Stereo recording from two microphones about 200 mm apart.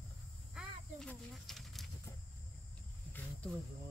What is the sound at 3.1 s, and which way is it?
Wild animals, 10° left (ahead or behind).